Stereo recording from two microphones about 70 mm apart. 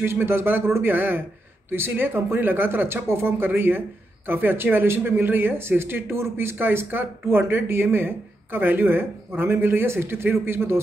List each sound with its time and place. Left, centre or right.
0.0 s speech: right